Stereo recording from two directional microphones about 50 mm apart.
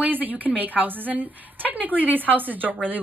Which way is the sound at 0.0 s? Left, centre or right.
Right.